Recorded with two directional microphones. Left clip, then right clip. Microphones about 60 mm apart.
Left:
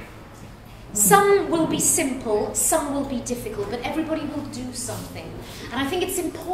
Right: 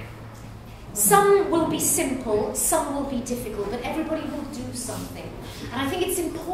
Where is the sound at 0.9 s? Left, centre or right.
Left.